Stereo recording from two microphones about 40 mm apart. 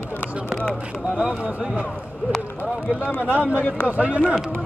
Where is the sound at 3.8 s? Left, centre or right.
Right.